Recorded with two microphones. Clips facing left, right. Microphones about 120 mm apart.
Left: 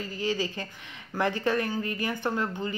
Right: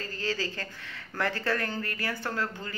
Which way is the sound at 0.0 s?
15° left (ahead or behind).